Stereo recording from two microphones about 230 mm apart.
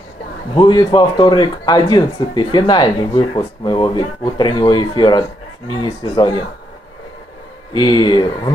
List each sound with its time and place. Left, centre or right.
0.6 s speech: centre
7.8 s speech: centre